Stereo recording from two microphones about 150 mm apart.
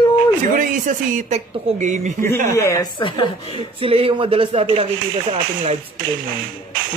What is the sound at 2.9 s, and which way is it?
Speech, 35° left (ahead or behind).